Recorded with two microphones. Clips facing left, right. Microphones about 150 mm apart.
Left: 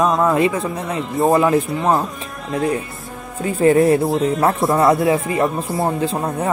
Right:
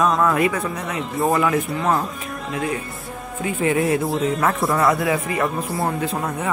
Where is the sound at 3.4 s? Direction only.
40° left (ahead or behind).